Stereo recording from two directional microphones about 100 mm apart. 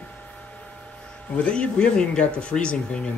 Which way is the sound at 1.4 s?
10° left (ahead or behind).